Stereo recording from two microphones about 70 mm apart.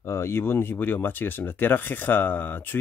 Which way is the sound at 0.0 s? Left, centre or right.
Left.